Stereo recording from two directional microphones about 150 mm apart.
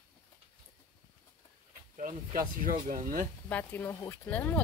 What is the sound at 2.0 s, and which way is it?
Speech, 65° right (ahead or behind).